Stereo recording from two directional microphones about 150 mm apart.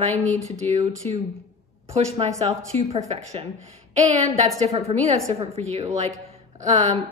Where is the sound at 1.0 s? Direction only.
40° right (ahead or behind).